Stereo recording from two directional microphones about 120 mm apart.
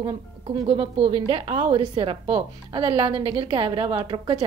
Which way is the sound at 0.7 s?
50° right (ahead or behind).